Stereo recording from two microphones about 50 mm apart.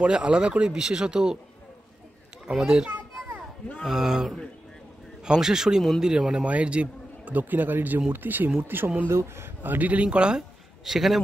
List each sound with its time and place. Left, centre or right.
0.0 s speech: right
2.5 s speech: centre
3.8 s speech: centre; by 7.4 s right
7.4 s a man's voice: right
9.1 s speech: right
9.6 s a man's voice: right
10.0 s speech: centre
10.8 s speech: centre